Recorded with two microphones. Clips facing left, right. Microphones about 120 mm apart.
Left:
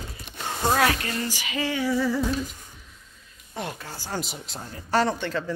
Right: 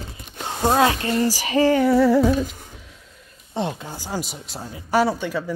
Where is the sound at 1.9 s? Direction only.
65° right (ahead or behind).